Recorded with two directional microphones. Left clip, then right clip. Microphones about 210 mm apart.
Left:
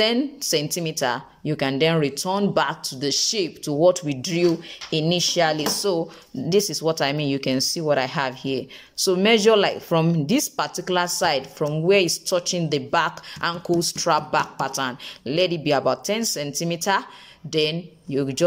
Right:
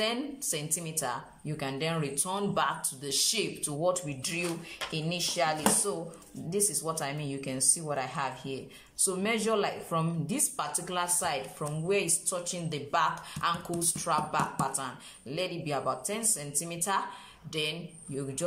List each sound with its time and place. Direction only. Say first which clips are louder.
0.0 s speech: left 10 dB; 35° left (ahead or behind)